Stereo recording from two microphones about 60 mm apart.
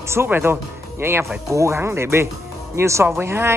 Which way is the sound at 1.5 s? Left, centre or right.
Right.